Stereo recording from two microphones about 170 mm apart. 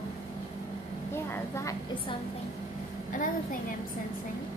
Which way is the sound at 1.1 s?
15° left (ahead or behind).